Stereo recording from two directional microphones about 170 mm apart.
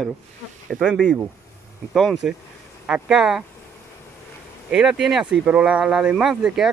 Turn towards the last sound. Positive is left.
turn(degrees=-5)  # may be behind; listen again after turning